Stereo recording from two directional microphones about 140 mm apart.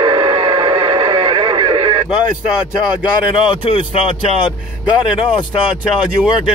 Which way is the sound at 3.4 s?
35° left (ahead or behind).